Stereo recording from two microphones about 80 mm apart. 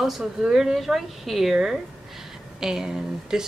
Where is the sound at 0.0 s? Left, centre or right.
Centre.